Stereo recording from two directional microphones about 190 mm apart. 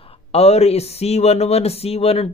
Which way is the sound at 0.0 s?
30° left (ahead or behind).